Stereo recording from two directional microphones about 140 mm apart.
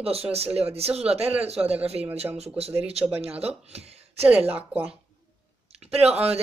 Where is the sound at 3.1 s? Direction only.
45° right (ahead or behind).